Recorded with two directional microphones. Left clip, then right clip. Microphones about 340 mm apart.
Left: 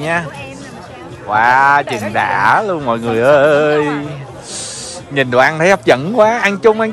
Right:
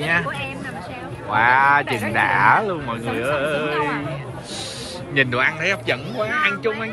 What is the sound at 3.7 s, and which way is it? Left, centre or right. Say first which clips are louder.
Speech: left 7 dB; left.